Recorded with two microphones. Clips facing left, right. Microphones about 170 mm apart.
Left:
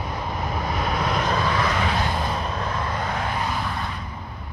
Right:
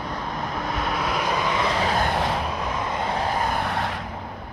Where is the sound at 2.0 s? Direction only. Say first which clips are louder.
Right 2 dB; 70° right (ahead or behind).